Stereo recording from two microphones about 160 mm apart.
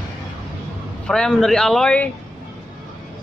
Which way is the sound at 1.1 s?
5° left (ahead or behind).